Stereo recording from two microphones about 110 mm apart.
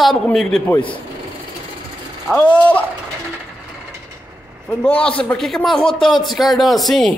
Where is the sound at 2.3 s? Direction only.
15° left (ahead or behind).